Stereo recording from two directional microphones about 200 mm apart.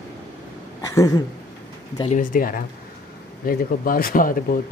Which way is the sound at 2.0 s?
40° left (ahead or behind).